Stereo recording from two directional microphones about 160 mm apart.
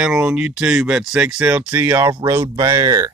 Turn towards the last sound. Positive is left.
turn(degrees=-25)  # may be behind; listen again after turning